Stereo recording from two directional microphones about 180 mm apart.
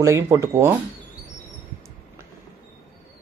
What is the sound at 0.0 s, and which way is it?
Speech, 15° right (ahead or behind).